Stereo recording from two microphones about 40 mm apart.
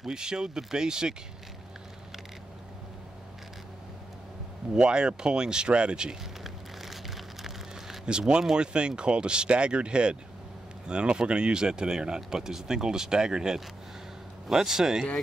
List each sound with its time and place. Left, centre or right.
0.0 s speech: centre
4.7 s speech: centre
6.4 s a sound: centre
8.0 s speech: right